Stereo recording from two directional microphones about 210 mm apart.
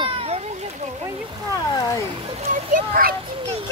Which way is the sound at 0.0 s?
30° right (ahead or behind).